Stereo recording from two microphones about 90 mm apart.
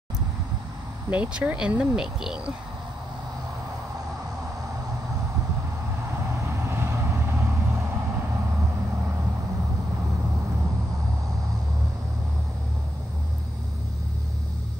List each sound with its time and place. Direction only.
1.1 s speech: 15° right (ahead or behind)
6.5 s vehicle: 30° right (ahead or behind)